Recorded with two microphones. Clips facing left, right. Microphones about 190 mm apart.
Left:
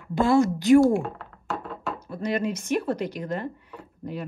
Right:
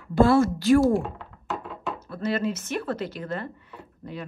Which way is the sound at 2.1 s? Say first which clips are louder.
Even; 15° left (ahead or behind).